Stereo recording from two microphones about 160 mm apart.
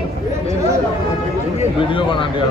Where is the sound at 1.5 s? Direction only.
30° left (ahead or behind).